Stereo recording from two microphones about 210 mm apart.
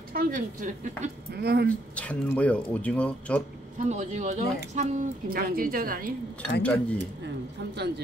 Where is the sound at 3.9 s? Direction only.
35° right (ahead or behind).